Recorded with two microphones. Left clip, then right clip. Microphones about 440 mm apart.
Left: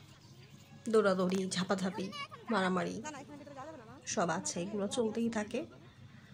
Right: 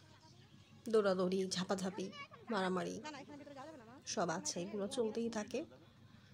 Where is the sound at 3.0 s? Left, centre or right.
Right.